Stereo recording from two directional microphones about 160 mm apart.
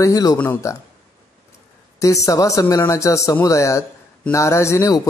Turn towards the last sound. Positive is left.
turn(degrees=20)  # may be behind; listen again after turning